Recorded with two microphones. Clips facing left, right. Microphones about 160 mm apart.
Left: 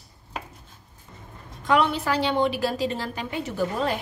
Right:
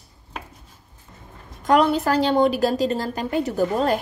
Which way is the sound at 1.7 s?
40° right (ahead or behind).